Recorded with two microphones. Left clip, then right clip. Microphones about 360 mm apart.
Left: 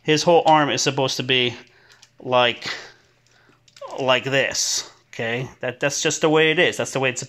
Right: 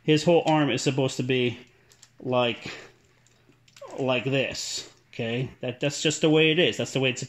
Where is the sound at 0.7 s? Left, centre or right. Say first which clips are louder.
Left 5 dB; centre.